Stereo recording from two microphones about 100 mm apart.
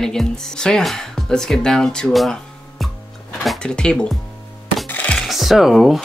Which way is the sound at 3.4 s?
5° left (ahead or behind).